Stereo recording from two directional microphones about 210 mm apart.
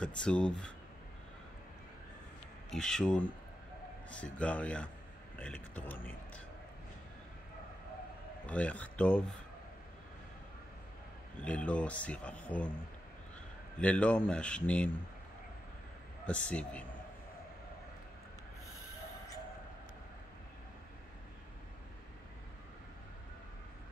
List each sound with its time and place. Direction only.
0.0 s a man's voice: 5° left (ahead or behind)
2.7 s a man's voice: 5° left (ahead or behind)
8.5 s speech: 5° left (ahead or behind)
11.4 s a man's voice: 5° left (ahead or behind)
13.7 s a man's voice: 5° left (ahead or behind)
16.3 s a man's voice: 5° left (ahead or behind)